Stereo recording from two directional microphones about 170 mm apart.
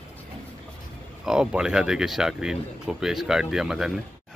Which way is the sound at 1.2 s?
5° right (ahead or behind).